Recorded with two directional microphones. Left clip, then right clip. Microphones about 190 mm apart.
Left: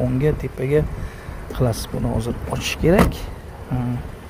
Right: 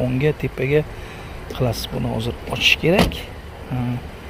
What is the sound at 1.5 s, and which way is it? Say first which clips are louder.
Speech: even; 20° left (ahead or behind).